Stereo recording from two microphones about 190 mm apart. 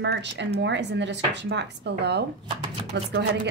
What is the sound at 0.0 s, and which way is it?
Speech, 65° right (ahead or behind).